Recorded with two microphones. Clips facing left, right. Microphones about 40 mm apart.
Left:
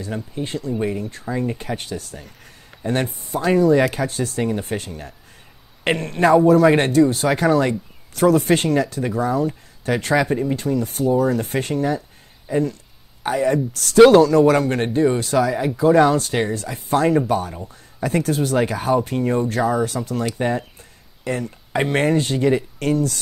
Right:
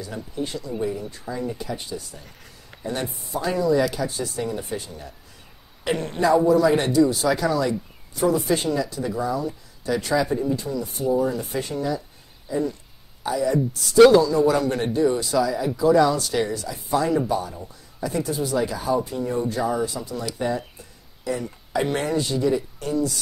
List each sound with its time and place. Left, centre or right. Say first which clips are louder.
0.0 s speech: left 3 dB; left
8.1 s speech: left 5 dB; left